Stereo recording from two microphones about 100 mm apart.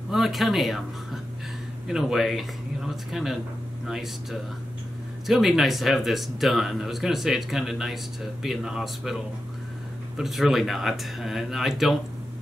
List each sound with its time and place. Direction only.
0.1 s speech: centre (ahead or behind)